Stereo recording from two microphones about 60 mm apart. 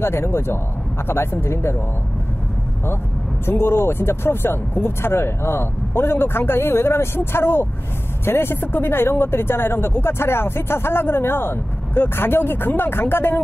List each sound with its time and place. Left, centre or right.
0.0 s speech: left
3.4 s speech: left